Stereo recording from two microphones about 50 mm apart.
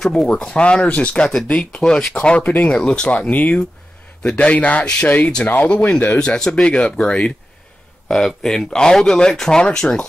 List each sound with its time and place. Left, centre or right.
0.0 s speech: centre
2.4 s speech: left
2.7 s speech: centre
3.1 s speech: left
5.7 s speech: left
8.4 s speech: centre